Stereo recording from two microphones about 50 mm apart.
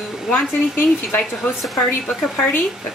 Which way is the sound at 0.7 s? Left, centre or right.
Left.